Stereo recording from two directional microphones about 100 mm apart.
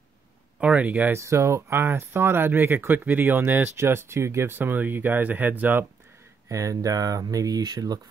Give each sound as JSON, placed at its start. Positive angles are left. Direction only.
{"t": 0.6, "sound": "speech", "side_deg": -15}
{"t": 1.1, "sound": "speech", "side_deg": -30}
{"t": 6.5, "sound": "speech", "side_deg": -35}